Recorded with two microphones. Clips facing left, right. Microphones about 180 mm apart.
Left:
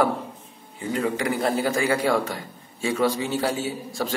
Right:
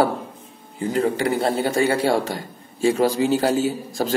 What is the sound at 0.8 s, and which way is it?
A man's voice, 35° right (ahead or behind).